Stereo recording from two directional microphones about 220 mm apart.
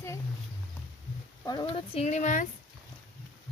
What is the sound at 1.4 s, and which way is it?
Speech, 20° left (ahead or behind).